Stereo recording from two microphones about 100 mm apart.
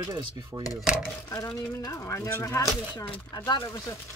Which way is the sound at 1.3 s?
35° left (ahead or behind).